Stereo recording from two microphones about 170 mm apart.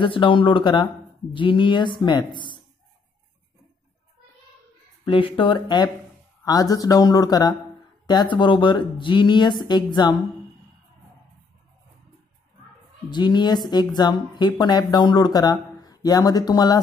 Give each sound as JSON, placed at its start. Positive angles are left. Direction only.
{"t": 0.0, "sound": "speech", "side_deg": 30}
{"t": 5.0, "sound": "speech", "side_deg": 30}
{"t": 13.1, "sound": "speech", "side_deg": 25}